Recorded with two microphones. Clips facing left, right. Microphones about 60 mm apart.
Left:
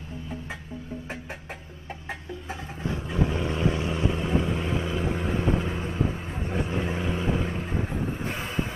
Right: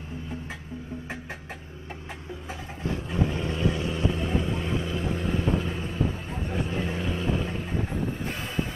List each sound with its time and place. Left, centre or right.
3.3 s vehicle: left